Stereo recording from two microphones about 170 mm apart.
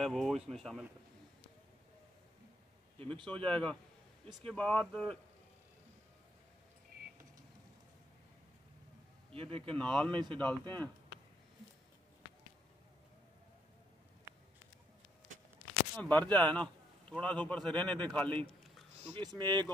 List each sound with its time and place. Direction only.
0.0 s speech: centre (ahead or behind)
3.0 s speech: 30° right (ahead or behind)
3.4 s speech: 5° left (ahead or behind)
9.3 s speech: 35° right (ahead or behind)
9.8 s speech: 5° left (ahead or behind)
16.0 s a man's voice: 10° left (ahead or behind)
19.0 s speech: 30° right (ahead or behind)